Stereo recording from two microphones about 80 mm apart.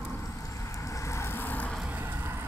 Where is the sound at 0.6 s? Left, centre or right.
Left.